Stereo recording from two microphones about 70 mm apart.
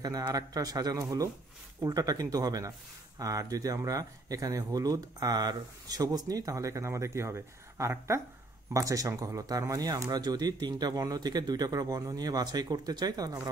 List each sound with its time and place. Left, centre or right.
0.3 s speech: right
8.7 s speech: right